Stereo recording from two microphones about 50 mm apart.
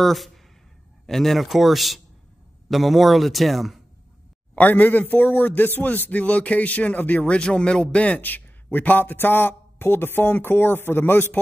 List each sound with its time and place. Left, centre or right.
0.0 s speech: centre
4.6 s a man's voice: left
7.3 s a man's voice: left